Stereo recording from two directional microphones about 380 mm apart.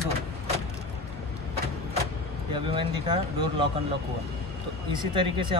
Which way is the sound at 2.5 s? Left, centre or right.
Centre.